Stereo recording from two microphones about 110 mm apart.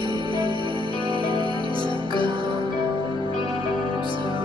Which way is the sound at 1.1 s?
50° right (ahead or behind).